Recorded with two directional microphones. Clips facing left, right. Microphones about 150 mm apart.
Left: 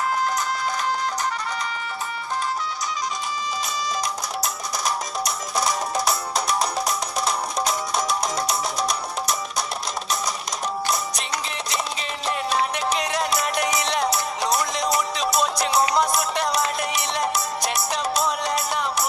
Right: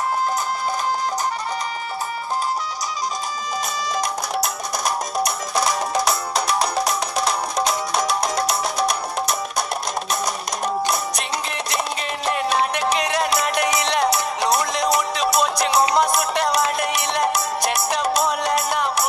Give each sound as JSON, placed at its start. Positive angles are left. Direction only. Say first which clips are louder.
{"t": 4.4, "sound": "music", "louder": "right 4 dB", "side_deg": -60}
{"t": 12.3, "sound": "music", "louder": "right 3 dB", "side_deg": -65}